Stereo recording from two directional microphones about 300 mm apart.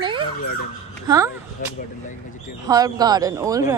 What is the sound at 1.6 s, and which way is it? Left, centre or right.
Speech, left.